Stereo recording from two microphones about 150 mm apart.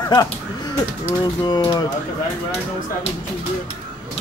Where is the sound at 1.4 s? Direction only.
25° left (ahead or behind).